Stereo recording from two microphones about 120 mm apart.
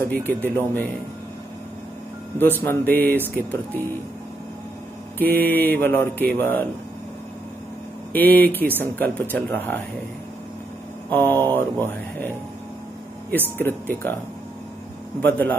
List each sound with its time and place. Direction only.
0.0 s music: 15° left (ahead or behind)
2.3 s music: 15° left (ahead or behind)
5.2 s music: 15° left (ahead or behind)
8.1 s music: 15° left (ahead or behind)
11.1 s music: 15° left (ahead or behind)
13.6 s music: 20° left (ahead or behind)
15.1 s music: 15° left (ahead or behind)